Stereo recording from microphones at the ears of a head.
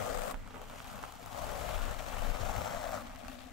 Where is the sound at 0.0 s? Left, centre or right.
Left.